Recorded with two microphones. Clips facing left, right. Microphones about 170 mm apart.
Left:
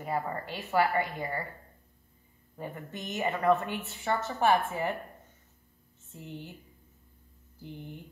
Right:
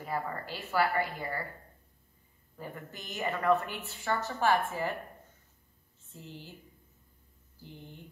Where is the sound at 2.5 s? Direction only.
25° left (ahead or behind).